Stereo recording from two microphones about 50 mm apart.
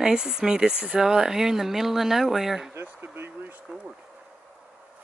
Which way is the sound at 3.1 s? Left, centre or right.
Right.